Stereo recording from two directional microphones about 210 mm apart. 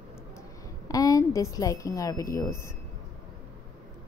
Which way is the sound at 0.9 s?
15° left (ahead or behind).